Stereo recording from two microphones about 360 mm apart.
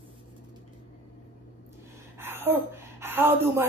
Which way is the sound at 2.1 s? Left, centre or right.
Centre.